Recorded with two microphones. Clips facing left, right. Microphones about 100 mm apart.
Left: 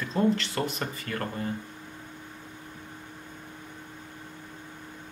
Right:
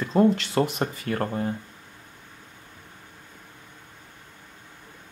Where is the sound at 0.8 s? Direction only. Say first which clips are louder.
Right 6 dB; 30° right (ahead or behind).